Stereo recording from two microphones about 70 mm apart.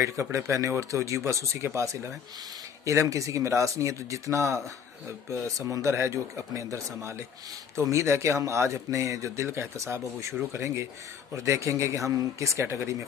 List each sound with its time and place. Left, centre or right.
0.0 s speech: right